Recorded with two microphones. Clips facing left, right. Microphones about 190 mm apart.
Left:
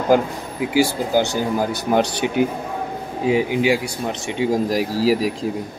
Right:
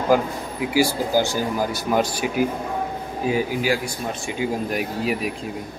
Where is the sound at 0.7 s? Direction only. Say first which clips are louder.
Left 2 dB; 20° left (ahead or behind).